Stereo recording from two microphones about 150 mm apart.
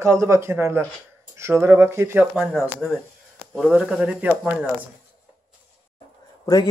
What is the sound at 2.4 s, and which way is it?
Speech, 5° right (ahead or behind).